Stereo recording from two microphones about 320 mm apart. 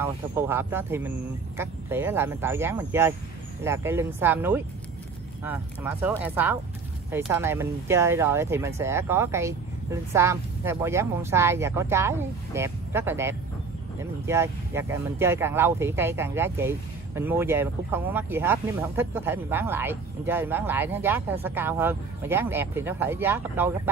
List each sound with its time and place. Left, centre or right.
0.0 s speech: centre